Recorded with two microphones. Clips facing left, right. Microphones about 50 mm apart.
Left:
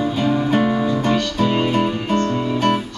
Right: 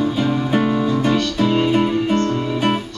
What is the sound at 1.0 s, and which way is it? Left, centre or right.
Music, left.